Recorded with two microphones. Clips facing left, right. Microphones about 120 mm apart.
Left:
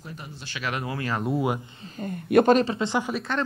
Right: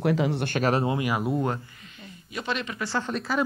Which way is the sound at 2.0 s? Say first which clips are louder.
Left 18 dB; 55° left (ahead or behind).